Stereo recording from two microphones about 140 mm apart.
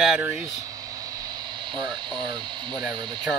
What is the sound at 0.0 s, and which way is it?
Speech, 5° right (ahead or behind).